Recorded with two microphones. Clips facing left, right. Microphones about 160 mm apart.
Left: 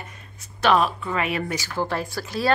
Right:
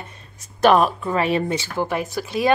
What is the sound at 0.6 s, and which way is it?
Speech, 50° right (ahead or behind).